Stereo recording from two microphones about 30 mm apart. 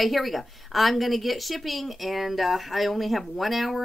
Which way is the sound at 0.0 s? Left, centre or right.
Centre.